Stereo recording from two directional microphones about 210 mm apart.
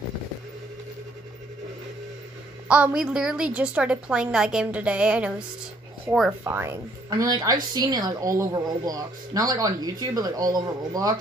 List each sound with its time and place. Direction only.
2.7 s a woman's voice: 5° right (ahead or behind)